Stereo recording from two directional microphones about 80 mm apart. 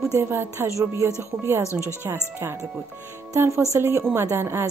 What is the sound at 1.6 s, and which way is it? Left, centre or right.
Speech, left.